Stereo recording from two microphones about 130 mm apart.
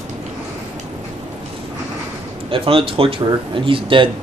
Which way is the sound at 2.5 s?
45° right (ahead or behind).